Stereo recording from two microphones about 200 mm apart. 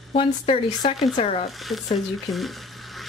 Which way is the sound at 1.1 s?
30° left (ahead or behind).